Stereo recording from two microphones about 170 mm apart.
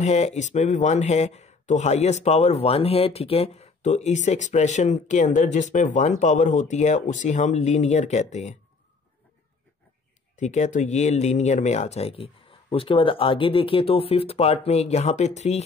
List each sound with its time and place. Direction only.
0.0 s speech: 40° left (ahead or behind)
10.4 s speech: 45° left (ahead or behind)